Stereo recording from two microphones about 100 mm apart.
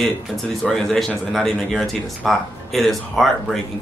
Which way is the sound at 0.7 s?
5° left (ahead or behind).